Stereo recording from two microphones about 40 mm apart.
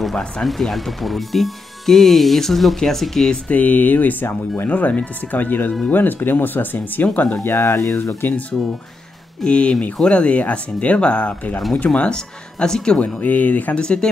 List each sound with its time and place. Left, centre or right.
0.4 s speech: centre
3.5 s speech: left
7.4 s speech: left
8.3 s speech: left
9.4 s speech: left
10.3 s speech: left
12.1 s speech: centre
13.0 s speech: left